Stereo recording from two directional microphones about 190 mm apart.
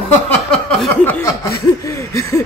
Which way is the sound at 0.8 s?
10° left (ahead or behind).